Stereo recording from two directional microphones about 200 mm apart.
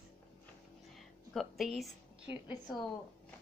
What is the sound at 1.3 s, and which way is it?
Speech, centre (ahead or behind).